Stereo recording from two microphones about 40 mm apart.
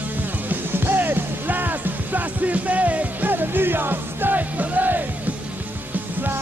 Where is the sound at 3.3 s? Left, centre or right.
Right.